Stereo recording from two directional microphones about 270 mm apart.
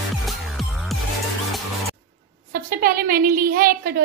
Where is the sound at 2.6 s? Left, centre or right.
Right.